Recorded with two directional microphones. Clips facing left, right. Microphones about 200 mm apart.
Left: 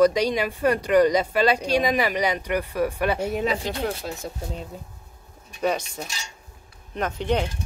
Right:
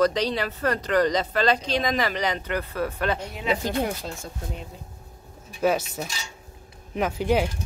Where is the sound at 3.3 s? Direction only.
40° left (ahead or behind).